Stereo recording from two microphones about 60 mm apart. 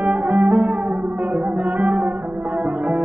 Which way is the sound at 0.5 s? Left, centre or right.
Centre.